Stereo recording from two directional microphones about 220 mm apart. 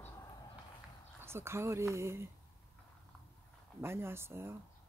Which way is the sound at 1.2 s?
10° right (ahead or behind).